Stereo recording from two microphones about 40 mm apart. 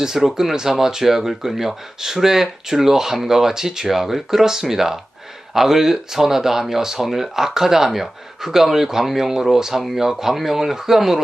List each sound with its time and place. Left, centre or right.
0.0 s speech: centre